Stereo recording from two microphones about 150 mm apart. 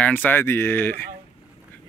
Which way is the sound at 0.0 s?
10° left (ahead or behind).